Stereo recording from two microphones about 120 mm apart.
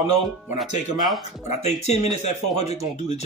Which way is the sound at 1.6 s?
70° left (ahead or behind).